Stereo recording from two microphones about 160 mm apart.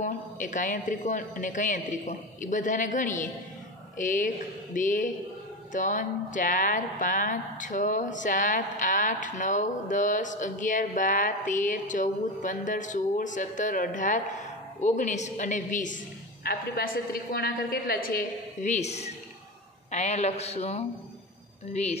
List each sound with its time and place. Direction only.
0.0 s a woman's voice: 50° left (ahead or behind)
16.4 s a woman's voice: 65° left (ahead or behind); by 20.8 s 40° left (ahead or behind)